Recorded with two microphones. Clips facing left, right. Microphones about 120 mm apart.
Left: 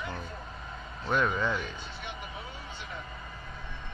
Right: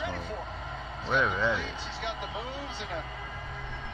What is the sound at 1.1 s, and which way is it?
Speech, centre (ahead or behind).